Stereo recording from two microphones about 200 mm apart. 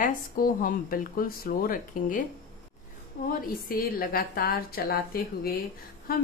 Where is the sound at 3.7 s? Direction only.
45° left (ahead or behind).